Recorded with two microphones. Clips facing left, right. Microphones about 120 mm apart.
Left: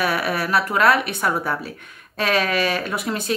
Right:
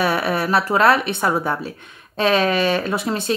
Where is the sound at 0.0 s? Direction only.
25° right (ahead or behind).